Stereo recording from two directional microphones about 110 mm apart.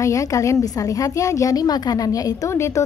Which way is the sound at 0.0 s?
30° left (ahead or behind).